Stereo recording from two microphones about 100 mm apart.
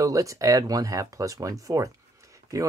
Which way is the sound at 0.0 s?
35° right (ahead or behind).